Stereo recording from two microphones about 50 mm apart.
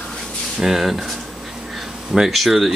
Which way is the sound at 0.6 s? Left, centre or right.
Centre.